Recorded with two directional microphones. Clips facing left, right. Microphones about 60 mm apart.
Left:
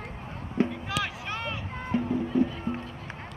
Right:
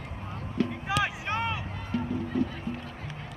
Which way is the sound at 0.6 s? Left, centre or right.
Left.